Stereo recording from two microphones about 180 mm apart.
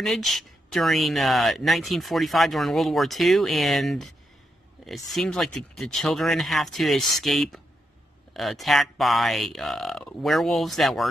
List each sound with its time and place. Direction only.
0.0 s speech: centre (ahead or behind)